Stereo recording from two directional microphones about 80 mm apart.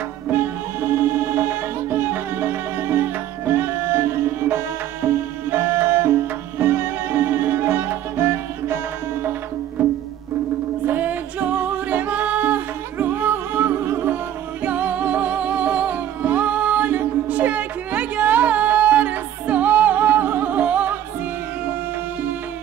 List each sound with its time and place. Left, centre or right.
0.3 s music: right
10.9 s music: right